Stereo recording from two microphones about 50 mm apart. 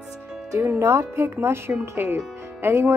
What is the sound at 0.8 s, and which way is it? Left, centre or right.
Speech, right.